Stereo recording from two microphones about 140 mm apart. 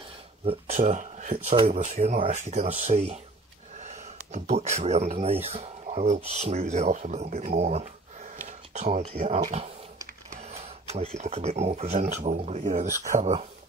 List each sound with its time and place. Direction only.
0.5 s speech: 50° right (ahead or behind)
1.5 s speech: 45° right (ahead or behind)
3.8 s a sound: 55° right (ahead or behind)
5.1 s speech: 45° right (ahead or behind)
7.4 s a sound: 60° right (ahead or behind)
10.3 s speech: 50° right (ahead or behind)